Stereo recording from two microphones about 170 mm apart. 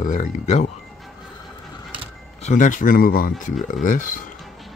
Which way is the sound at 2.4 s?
45° left (ahead or behind).